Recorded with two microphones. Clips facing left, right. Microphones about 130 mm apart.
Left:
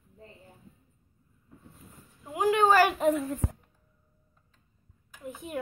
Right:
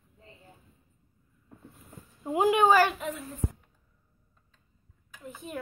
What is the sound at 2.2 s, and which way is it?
Speech, 25° right (ahead or behind).